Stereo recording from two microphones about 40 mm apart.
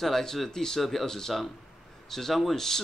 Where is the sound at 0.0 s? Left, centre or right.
Centre.